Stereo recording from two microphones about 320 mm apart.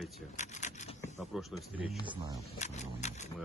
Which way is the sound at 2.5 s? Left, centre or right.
Left.